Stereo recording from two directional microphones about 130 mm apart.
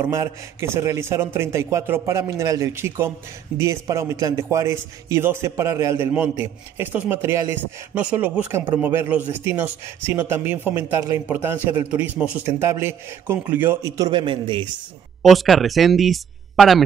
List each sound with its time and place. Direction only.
0.0 s a man's voice: 20° right (ahead or behind); by 14.7 s 40° right (ahead or behind)
15.2 s speech: centre (ahead or behind)